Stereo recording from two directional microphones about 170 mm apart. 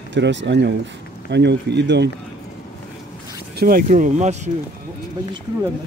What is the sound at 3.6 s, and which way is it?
Speech, 60° right (ahead or behind).